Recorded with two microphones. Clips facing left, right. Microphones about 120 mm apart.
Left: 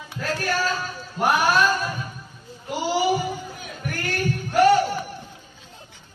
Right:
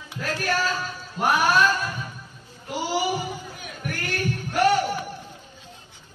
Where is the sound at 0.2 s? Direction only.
Centre (ahead or behind).